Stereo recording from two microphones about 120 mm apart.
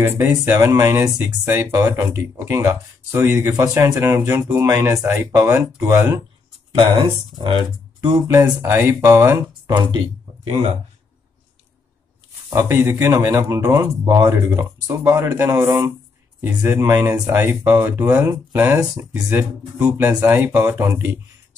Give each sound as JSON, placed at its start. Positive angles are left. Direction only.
{"t": 0.0, "sound": "speech", "side_deg": -20}
{"t": 1.7, "sound": "speech", "side_deg": -30}
{"t": 7.0, "sound": "speech", "side_deg": -40}
{"t": 8.3, "sound": "speech", "side_deg": -20}
{"t": 12.4, "sound": "speech", "side_deg": -25}
{"t": 16.3, "sound": "speech", "side_deg": -20}